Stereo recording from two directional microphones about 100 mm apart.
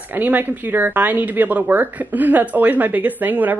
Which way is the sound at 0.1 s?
20° right (ahead or behind).